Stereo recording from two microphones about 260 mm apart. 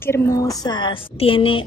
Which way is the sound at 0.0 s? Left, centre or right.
Centre.